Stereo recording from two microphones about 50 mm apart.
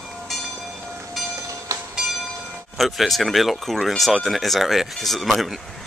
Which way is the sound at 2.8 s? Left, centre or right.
Centre.